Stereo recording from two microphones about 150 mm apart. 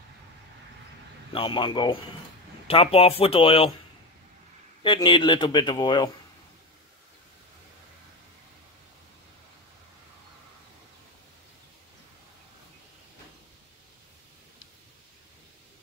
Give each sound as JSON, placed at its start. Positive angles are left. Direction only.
{"t": 1.3, "sound": "speech", "side_deg": 35}
{"t": 4.8, "sound": "speech", "side_deg": 30}